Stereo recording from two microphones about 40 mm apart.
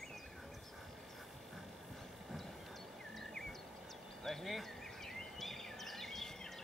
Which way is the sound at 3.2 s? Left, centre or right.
Centre.